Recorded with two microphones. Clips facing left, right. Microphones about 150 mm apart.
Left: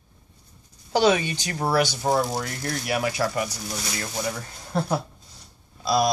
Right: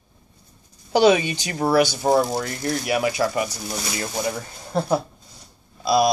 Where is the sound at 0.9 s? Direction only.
5° right (ahead or behind).